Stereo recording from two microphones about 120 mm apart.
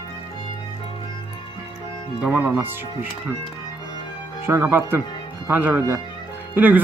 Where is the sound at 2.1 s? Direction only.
10° right (ahead or behind).